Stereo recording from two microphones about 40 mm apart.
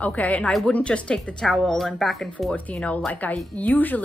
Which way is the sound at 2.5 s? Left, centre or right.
Left.